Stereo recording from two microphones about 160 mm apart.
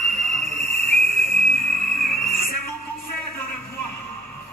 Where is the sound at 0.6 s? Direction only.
15° left (ahead or behind).